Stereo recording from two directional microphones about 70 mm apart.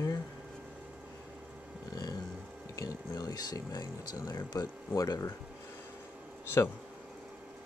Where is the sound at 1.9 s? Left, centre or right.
Left.